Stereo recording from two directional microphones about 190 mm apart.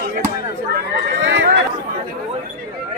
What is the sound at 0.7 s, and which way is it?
Speech, 65° right (ahead or behind).